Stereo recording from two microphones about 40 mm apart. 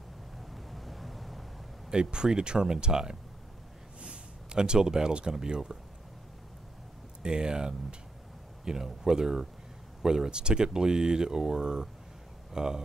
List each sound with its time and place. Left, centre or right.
0.4 s vehicle: centre
1.9 s speech: right
7.2 s speech: centre